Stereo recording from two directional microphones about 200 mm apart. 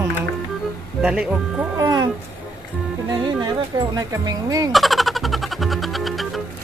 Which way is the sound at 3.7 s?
20° right (ahead or behind).